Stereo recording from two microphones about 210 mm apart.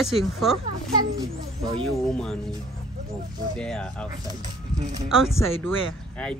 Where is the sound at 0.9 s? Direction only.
20° right (ahead or behind).